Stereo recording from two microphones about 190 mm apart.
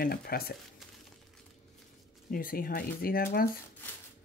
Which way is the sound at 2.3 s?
50° left (ahead or behind).